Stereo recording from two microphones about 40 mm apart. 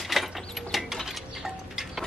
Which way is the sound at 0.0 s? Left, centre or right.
Centre.